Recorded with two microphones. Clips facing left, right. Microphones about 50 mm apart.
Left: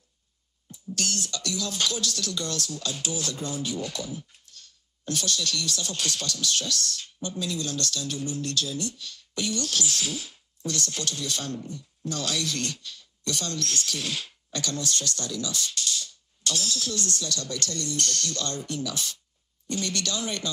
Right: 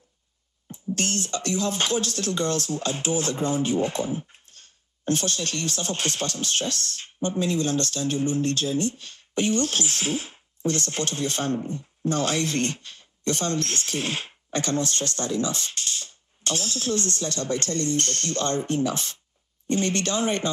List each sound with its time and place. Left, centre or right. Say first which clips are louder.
0.7 s speech: right 4 dB; right